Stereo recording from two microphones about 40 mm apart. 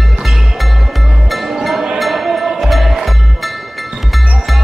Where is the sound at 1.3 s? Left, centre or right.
Centre.